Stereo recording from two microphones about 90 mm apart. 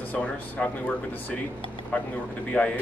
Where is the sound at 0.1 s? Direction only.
15° left (ahead or behind).